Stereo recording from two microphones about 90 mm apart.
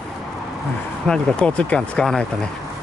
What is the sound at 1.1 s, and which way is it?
Speech, 10° left (ahead or behind).